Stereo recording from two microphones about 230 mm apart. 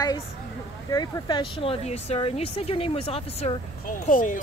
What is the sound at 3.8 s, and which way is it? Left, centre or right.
Speech, left.